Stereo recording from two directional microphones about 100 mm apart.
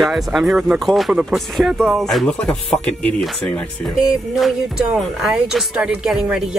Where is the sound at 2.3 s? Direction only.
10° left (ahead or behind).